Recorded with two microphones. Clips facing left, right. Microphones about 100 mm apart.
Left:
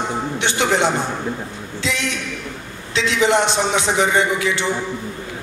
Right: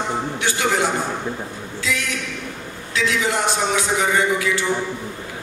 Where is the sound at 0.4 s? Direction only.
25° left (ahead or behind).